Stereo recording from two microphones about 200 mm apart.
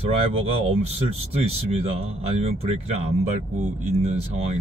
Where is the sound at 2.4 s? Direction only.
30° right (ahead or behind).